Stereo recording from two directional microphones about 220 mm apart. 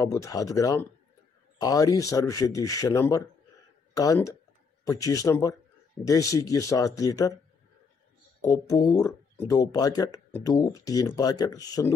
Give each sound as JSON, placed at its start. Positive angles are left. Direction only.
{"t": 0.0, "sound": "speech", "side_deg": 15}
{"t": 8.4, "sound": "speech", "side_deg": 15}